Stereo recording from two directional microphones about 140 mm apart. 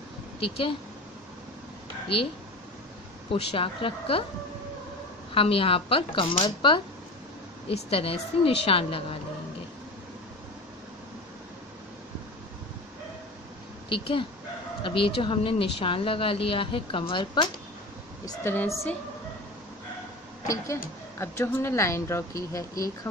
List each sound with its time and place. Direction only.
0.4 s speech: 40° left (ahead or behind)
3.3 s speech: 40° left (ahead or behind)
5.3 s a woman's voice: 40° left (ahead or behind)
13.8 s speech: 40° left (ahead or behind)
18.2 s speech: 15° left (ahead or behind)
20.4 s speech: 20° left (ahead or behind)